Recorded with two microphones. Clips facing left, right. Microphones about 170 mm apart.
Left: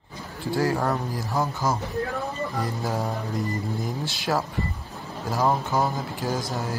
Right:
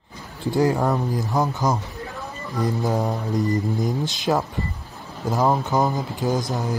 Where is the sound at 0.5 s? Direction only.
20° right (ahead or behind).